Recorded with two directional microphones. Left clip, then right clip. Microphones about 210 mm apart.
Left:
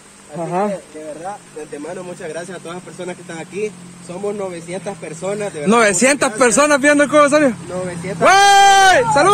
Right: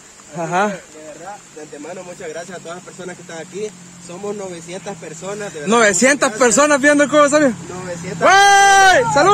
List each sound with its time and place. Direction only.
0.4 s speech: 20° right (ahead or behind)
2.2 s speech: 35° left (ahead or behind)
4.4 s speech: 20° left (ahead or behind)
5.7 s speech: 5° left (ahead or behind)